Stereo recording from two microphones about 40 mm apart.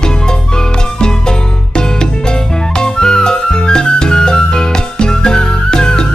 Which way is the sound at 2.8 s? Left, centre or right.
Centre.